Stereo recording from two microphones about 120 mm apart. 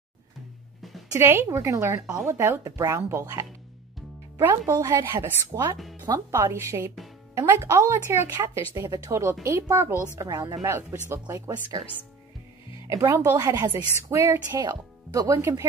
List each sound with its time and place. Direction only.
1.1 s speech: 20° right (ahead or behind)
5.9 s speech: 35° right (ahead or behind)
6.3 s speech: 20° right (ahead or behind)
10.1 s speech: 30° right (ahead or behind)
10.7 s speech: 20° right (ahead or behind)
12.8 s speech: 25° right (ahead or behind)